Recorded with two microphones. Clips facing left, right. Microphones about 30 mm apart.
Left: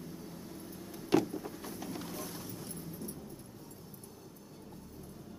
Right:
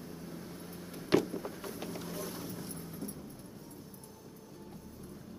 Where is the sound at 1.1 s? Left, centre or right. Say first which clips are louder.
Even; right.